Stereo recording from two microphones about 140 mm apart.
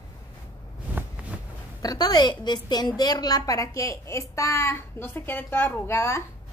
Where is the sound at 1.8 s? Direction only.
30° left (ahead or behind).